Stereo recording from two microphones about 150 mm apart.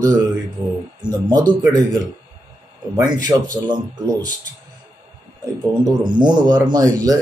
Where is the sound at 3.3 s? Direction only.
25° right (ahead or behind).